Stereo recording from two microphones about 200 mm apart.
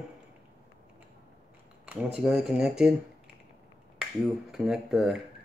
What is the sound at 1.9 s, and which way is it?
Speech, centre (ahead or behind).